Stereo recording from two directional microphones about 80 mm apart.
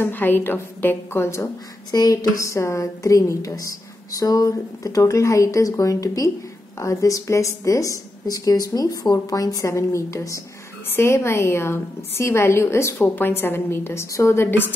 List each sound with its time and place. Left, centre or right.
0.0 s a woman's voice: left
1.9 s a woman's voice: left